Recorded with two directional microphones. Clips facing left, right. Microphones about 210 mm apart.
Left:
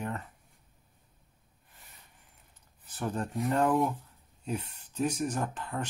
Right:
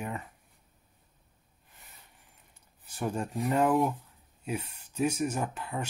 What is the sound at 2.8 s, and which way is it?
Speech, 10° right (ahead or behind).